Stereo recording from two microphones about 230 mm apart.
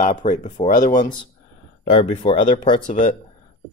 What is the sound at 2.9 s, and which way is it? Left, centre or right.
Speech, left.